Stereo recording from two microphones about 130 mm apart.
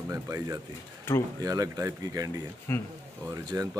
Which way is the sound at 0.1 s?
25° right (ahead or behind).